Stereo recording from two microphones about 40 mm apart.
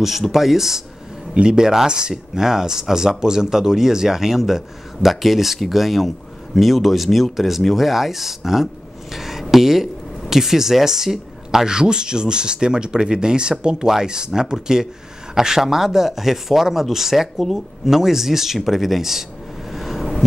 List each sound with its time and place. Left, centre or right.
0.2 s speech: centre
1.3 s speech: right
9.1 s a sound: centre
10.3 s speech: centre
19.7 s vehicle: centre